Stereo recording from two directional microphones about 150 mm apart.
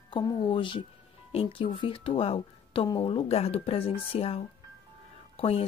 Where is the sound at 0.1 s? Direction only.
30° left (ahead or behind).